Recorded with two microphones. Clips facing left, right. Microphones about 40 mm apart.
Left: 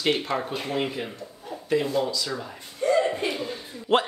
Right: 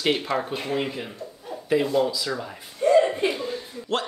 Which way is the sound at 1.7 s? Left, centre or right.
Centre.